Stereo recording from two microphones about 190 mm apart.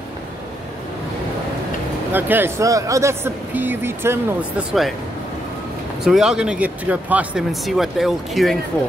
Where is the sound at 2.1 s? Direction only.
10° right (ahead or behind).